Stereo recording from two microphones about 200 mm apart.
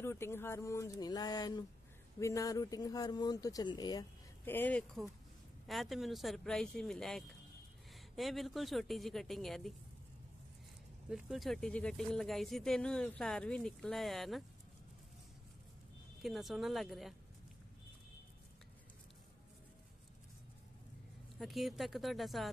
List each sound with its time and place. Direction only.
0.0 s speech: 15° left (ahead or behind)
4.5 s speech: 10° left (ahead or behind)
11.1 s speech: centre (ahead or behind)
16.2 s speech: centre (ahead or behind)
21.4 s speech: centre (ahead or behind)